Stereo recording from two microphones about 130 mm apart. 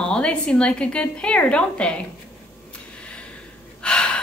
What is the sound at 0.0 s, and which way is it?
A woman's voice, 5° left (ahead or behind).